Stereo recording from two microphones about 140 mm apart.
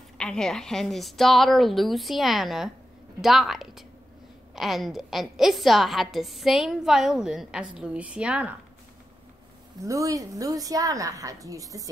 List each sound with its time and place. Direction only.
0.2 s a woman's voice: 5° left (ahead or behind)
9.8 s a woman's voice: 25° right (ahead or behind)